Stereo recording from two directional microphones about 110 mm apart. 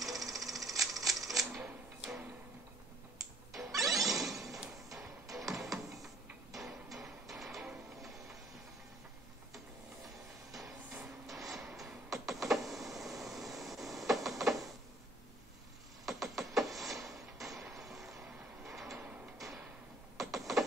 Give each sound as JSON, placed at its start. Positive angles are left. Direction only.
{"t": 0.0, "sound": "typewriter", "side_deg": 0}
{"t": 1.5, "sound": "a sound", "side_deg": -10}
{"t": 3.5, "sound": "music", "side_deg": 0}
{"t": 5.2, "sound": "music", "side_deg": -30}
{"t": 5.5, "sound": "music", "side_deg": 0}
{"t": 11.5, "sound": "power windows", "side_deg": 0}
{"t": 16.1, "sound": "music", "side_deg": 0}
{"t": 19.3, "sound": "a sound", "side_deg": 0}